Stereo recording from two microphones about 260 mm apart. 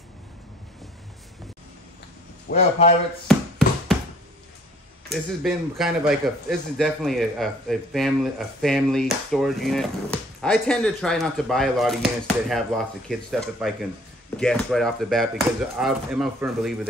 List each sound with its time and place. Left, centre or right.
2.5 s a man's voice: left
3.3 s tap: centre
5.1 s a man's voice: centre